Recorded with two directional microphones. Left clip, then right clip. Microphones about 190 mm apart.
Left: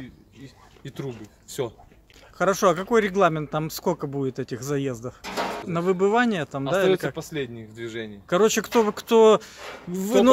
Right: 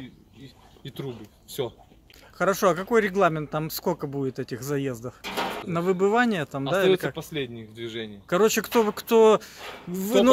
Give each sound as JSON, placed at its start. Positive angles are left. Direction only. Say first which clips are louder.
{"t": 0.8, "sound": "speech", "louder": "left 1 dB", "side_deg": 20}
{"t": 2.3, "sound": "speech", "louder": "left 2 dB", "side_deg": 5}
{"t": 5.2, "sound": "a sound", "louder": "left 1 dB", "side_deg": -30}
{"t": 5.7, "sound": "speech", "louder": "left 1 dB", "side_deg": 0}